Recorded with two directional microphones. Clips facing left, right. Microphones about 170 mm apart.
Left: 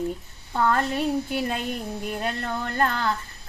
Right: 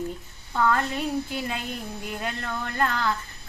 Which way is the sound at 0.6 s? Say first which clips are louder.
Left 1 dB; 35° left (ahead or behind).